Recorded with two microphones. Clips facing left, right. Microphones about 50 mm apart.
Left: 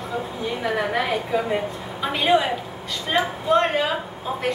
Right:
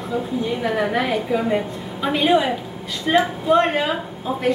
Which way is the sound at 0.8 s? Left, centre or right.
Centre.